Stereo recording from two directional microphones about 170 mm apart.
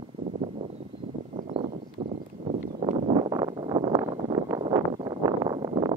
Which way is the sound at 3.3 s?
25° right (ahead or behind).